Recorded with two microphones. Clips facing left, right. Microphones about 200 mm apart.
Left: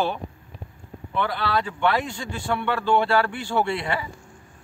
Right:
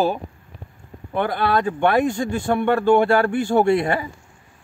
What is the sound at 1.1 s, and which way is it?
Speech, 50° right (ahead or behind).